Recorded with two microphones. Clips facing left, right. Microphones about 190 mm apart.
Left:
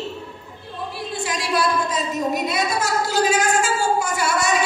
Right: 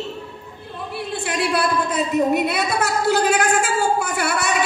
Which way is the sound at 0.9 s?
60° right (ahead or behind).